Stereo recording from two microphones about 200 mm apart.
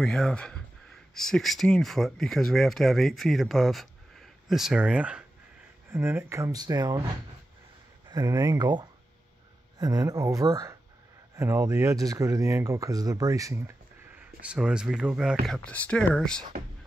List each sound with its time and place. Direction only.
0.0 s speech: 5° left (ahead or behind); by 7.0 s 20° right (ahead or behind)
8.1 s speech: 15° right (ahead or behind); by 16.4 s 5° left (ahead or behind)